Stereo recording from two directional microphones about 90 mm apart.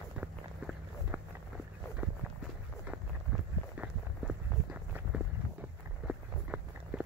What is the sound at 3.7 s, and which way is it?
Run, 15° right (ahead or behind).